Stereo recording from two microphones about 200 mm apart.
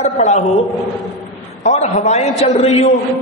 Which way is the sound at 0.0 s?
35° left (ahead or behind).